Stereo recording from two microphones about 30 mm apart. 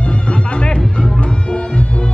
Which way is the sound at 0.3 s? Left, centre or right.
Left.